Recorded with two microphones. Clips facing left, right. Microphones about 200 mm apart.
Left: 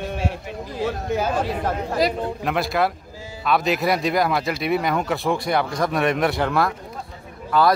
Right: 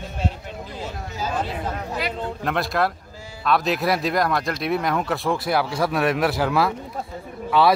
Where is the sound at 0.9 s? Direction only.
60° left (ahead or behind).